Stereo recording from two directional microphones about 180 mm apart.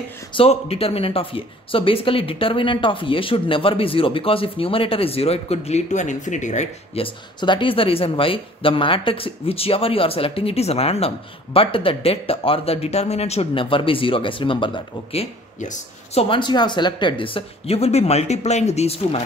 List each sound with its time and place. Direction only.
0.3 s speech: 30° left (ahead or behind)
7.3 s speech: 25° left (ahead or behind)
15.6 s a woman's voice: 40° left (ahead or behind)
16.3 s speech: 25° left (ahead or behind)